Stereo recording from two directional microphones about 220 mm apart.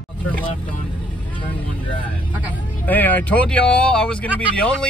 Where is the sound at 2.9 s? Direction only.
10° left (ahead or behind).